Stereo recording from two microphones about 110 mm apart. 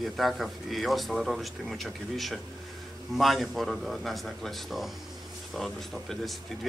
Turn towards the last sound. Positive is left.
turn(degrees=0)  # may be behind; listen again after turning